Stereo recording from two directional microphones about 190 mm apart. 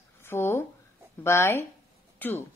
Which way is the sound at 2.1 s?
10° left (ahead or behind).